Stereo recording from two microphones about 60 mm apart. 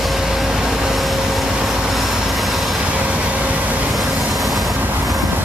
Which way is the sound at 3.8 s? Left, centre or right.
Centre.